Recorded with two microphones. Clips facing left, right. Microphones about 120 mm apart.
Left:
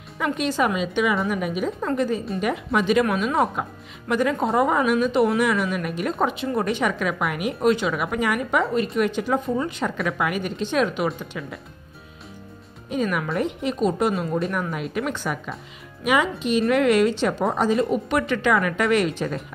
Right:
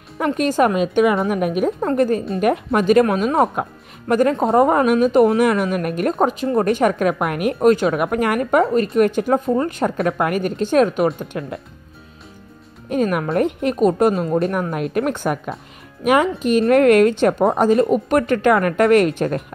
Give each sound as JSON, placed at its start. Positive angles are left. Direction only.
{"t": 0.2, "sound": "a woman's voice", "side_deg": -45}
{"t": 3.1, "sound": "speech", "side_deg": -40}
{"t": 3.6, "sound": "a woman's voice", "side_deg": -55}
{"t": 4.1, "sound": "speech", "side_deg": -45}
{"t": 6.1, "sound": "speech", "side_deg": -40}
{"t": 12.9, "sound": "speech", "side_deg": -45}
{"t": 14.1, "sound": "speech", "side_deg": -30}
{"t": 14.4, "sound": "speech", "side_deg": -50}